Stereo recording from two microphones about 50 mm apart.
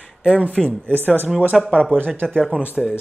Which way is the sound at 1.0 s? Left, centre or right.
Right.